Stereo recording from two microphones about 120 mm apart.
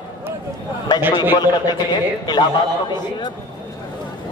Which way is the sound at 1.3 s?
35° left (ahead or behind).